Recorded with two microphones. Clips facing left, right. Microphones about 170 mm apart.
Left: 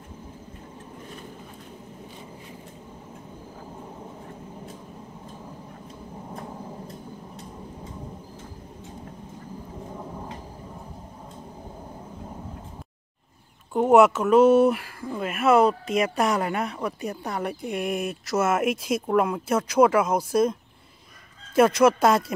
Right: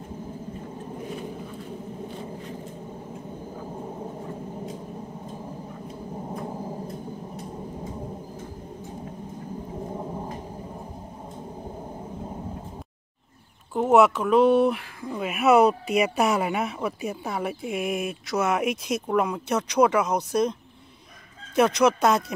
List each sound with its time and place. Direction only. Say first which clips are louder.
6.2 s a sound: right 4 dB; 30° right (ahead or behind)
9.9 s thunder: right 3 dB; 25° right (ahead or behind)
13.7 s speech: left 2 dB; centre (ahead or behind)
21.5 s speech: left 2 dB; 5° left (ahead or behind)